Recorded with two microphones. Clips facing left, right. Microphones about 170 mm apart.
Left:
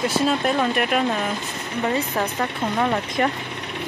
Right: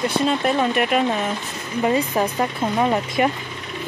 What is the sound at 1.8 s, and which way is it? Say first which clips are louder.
Speech: right 4 dB; 15° right (ahead or behind).